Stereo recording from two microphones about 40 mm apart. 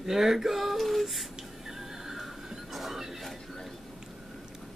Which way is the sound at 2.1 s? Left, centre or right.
Centre.